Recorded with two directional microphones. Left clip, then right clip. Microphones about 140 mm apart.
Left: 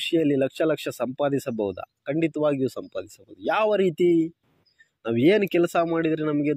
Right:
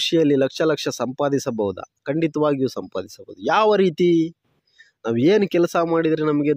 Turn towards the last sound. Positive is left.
turn(degrees=-50)  # may be behind; listen again after turning